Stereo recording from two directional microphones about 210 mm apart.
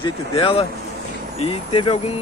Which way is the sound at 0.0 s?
25° left (ahead or behind).